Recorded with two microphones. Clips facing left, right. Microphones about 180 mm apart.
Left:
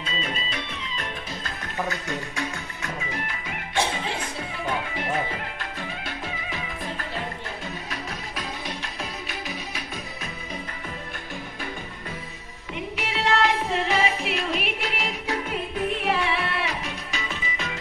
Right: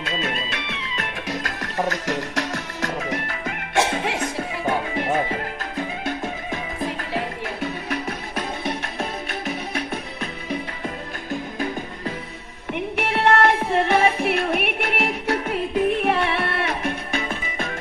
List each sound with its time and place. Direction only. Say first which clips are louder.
0.0 s music: right 4 dB; 70° right (ahead or behind)
7.9 s music: right 7 dB; 60° right (ahead or behind)
12.7 s music: right 6 dB; 55° right (ahead or behind)